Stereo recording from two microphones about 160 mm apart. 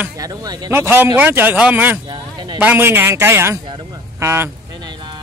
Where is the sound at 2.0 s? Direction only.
30° right (ahead or behind).